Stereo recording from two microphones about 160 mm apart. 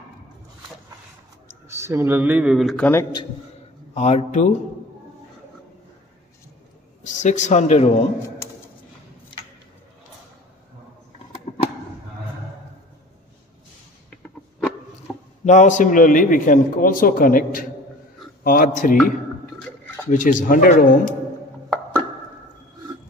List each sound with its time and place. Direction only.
1.7 s speech: 15° right (ahead or behind)
2.8 s a man's voice: 15° left (ahead or behind)
3.9 s speech: 45° left (ahead or behind)
7.0 s a man's voice: 50° left (ahead or behind)
15.4 s a man's voice: 50° left (ahead or behind)
20.1 s speech: 50° left (ahead or behind)